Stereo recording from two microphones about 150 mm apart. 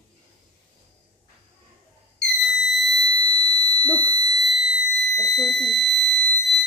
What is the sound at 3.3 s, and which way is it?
Fire alarm, 30° right (ahead or behind).